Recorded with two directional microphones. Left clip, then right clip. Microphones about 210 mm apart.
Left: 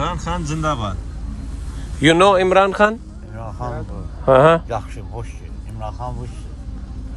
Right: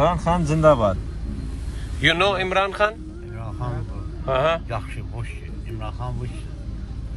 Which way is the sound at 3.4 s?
30° left (ahead or behind).